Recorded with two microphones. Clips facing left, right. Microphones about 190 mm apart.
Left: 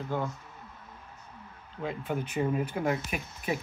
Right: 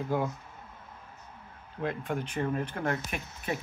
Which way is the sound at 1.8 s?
5° left (ahead or behind).